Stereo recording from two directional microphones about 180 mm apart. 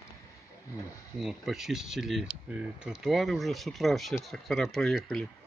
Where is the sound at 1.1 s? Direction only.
Centre (ahead or behind).